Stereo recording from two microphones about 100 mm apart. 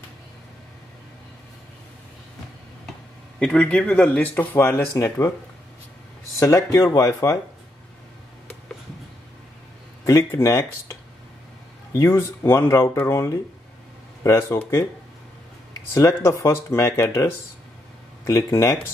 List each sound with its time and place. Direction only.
3.3 s speech: 10° left (ahead or behind); by 5.3 s 30° left (ahead or behind)
6.4 s speech: 30° left (ahead or behind)
10.0 s speech: 30° left (ahead or behind)
11.9 s speech: 30° left (ahead or behind)
15.9 s speech: 30° left (ahead or behind)